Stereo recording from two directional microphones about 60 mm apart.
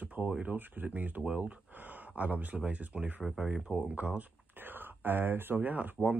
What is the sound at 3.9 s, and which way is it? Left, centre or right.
Speech, right.